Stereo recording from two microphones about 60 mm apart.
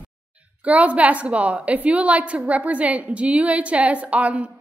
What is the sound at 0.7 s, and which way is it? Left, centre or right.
A woman's voice, right.